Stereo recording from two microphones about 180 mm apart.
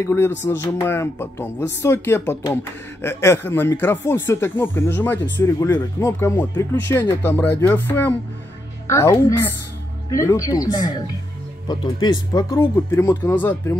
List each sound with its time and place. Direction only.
0.0 s speech: 15° left (ahead or behind)